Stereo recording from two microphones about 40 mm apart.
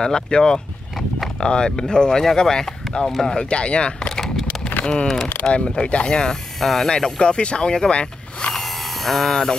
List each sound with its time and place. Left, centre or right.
0.0 s speech: centre
3.3 s speech: left
4.1 s a sound: centre
5.0 s speech: centre
5.4 s speech: left
6.6 s speech: centre
6.9 s speech: centre
7.9 s vehicle: left
8.5 s electric shaver: centre
9.3 s speech: centre